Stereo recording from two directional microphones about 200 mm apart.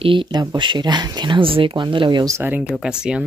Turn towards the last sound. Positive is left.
turn(degrees=-5)  # may be behind; listen again after turning